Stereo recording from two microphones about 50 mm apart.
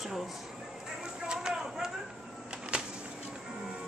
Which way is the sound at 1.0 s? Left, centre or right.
Centre.